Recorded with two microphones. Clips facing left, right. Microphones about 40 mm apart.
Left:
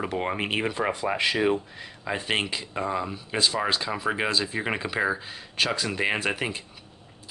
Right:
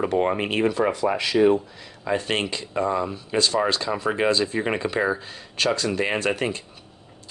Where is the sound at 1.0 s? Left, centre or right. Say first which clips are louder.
Right 3 dB; left.